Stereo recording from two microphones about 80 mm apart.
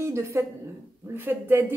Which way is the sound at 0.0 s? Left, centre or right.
Right.